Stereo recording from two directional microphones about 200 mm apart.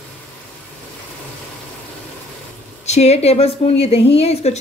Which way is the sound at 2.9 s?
35° left (ahead or behind).